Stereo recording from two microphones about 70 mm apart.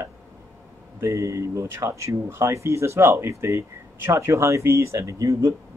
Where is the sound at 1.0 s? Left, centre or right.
Right.